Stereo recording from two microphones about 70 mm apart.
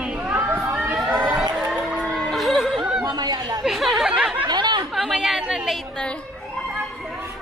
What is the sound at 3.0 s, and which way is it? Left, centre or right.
Chatter, right.